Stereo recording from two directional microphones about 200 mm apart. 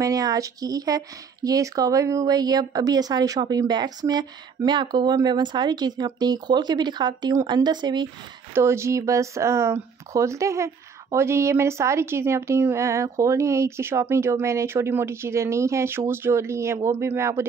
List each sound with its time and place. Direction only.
0.0 s speech: 20° right (ahead or behind)